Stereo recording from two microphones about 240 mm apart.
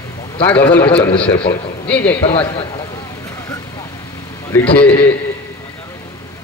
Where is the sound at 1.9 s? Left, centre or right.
Centre.